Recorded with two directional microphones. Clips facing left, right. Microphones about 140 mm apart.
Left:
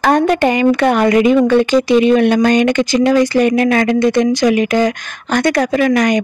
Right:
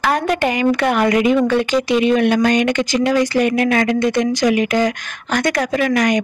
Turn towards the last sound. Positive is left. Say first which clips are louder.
# left 3 dB
turn(degrees=35)  # may be behind; listen again after turning